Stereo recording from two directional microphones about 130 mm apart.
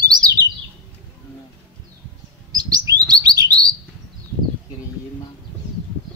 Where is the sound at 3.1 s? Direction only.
30° right (ahead or behind).